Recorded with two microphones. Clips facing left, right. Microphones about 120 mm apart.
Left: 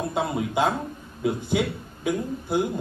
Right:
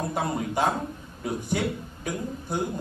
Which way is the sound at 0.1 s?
20° left (ahead or behind).